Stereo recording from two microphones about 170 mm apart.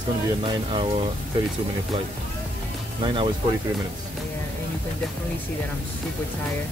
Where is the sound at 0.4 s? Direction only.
30° right (ahead or behind).